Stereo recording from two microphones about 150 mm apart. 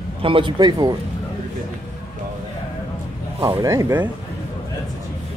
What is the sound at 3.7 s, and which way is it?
Speech, 15° right (ahead or behind).